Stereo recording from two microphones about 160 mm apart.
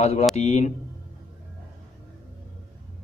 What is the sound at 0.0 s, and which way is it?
Speech, 45° left (ahead or behind).